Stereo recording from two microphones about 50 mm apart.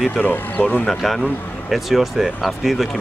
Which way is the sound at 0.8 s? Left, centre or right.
Centre.